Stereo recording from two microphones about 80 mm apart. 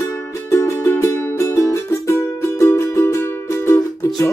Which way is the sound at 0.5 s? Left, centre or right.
Left.